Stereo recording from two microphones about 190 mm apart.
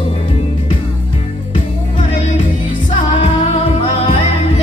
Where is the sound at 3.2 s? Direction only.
30° left (ahead or behind).